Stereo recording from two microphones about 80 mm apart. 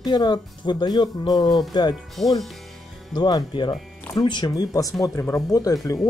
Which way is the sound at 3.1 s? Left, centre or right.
Left.